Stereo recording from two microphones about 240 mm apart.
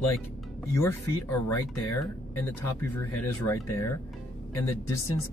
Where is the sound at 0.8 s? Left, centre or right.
Centre.